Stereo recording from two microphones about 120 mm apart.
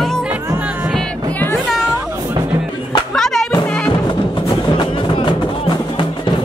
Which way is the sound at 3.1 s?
5° left (ahead or behind).